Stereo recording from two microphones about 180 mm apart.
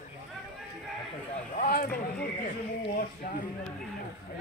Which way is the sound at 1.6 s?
55° left (ahead or behind).